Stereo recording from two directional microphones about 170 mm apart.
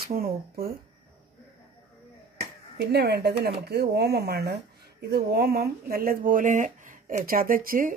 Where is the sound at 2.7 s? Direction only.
75° right (ahead or behind); by 7.9 s 55° right (ahead or behind).